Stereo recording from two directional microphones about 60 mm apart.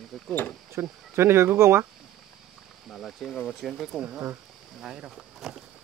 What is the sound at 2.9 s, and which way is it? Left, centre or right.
Speech, centre.